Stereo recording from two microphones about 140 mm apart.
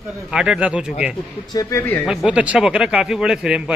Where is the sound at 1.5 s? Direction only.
25° left (ahead or behind).